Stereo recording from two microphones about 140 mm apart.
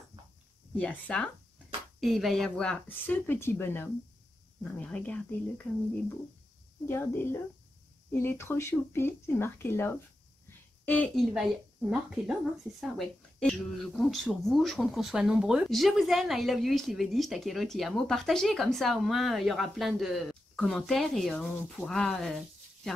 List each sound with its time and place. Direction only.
0.7 s speech: 10° left (ahead or behind)
11.1 s speech: centre (ahead or behind)